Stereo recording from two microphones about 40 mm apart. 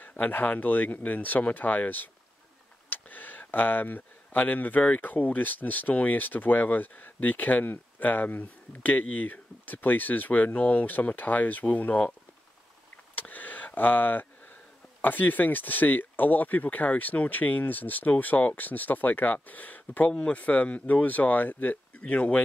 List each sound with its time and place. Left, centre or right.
0.0 s speech: left
12.9 s a sound: left
15.0 s speech: left
20.1 s speech: left